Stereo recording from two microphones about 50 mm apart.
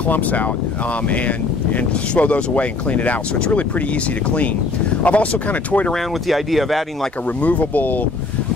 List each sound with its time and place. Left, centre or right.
0.1 s speech: left
5.0 s speech: left
6.2 s speech: centre
7.4 s speech: left